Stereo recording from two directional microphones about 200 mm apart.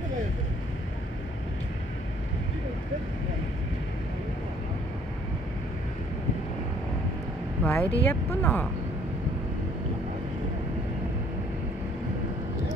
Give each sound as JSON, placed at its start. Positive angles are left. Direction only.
{"t": 7.6, "sound": "speech", "side_deg": 10}